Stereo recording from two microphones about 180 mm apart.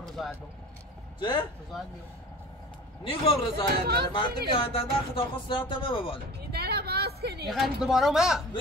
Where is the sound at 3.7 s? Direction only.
60° right (ahead or behind).